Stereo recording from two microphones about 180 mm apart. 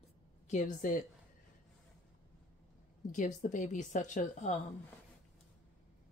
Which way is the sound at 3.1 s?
40° left (ahead or behind).